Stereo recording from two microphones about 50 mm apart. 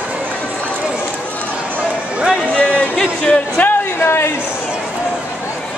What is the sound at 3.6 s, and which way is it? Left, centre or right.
Speech, left.